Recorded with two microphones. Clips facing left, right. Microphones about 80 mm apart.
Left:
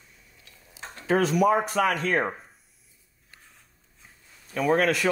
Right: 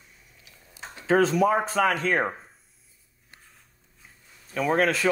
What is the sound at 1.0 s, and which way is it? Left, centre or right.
Speech, right.